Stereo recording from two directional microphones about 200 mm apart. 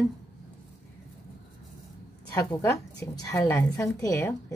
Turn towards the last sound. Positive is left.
turn(degrees=15)  # may be behind; listen again after turning